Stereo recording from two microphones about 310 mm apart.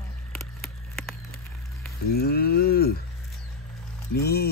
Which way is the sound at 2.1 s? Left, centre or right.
Left.